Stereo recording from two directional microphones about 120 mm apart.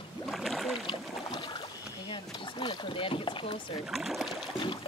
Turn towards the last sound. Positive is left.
turn(degrees=0)  # may be behind; listen again after turning